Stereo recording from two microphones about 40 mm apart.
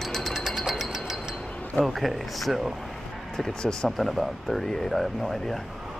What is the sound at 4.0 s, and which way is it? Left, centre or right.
Speech, centre.